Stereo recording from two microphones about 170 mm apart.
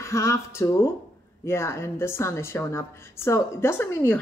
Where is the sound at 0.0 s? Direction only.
15° left (ahead or behind).